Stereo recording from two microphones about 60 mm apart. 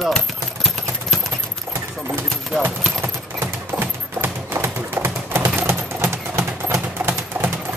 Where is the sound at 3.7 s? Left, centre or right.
Right.